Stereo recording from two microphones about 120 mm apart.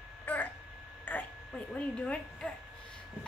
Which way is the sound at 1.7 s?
10° left (ahead or behind).